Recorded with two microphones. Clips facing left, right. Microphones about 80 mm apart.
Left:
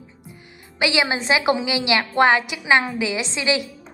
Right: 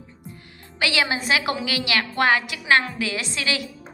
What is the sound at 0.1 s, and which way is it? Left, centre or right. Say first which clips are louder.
A woman's voice: right 1 dB; centre.